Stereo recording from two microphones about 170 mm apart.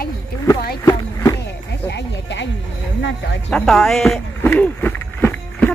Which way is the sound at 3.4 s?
5° left (ahead or behind).